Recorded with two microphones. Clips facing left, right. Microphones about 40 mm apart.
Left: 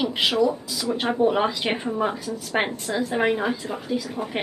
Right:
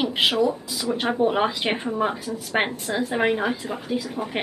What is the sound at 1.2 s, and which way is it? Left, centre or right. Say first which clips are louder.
Speech: left 1 dB; centre.